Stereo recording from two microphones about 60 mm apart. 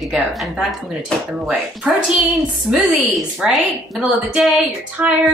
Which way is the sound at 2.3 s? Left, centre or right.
Centre.